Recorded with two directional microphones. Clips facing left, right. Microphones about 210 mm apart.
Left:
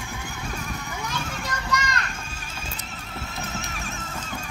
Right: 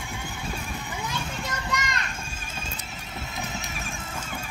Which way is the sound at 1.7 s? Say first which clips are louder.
Left 3 dB; 25° right (ahead or behind).